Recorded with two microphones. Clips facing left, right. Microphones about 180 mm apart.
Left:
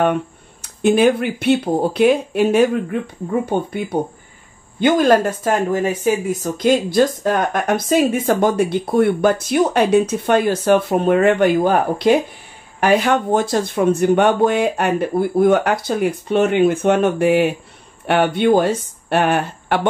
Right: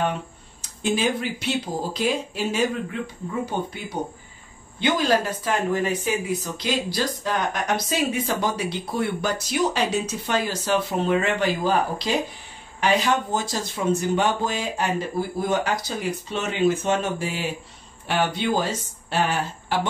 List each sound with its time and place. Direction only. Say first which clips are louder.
0.0 s speech: left 8 dB; 60° left (ahead or behind)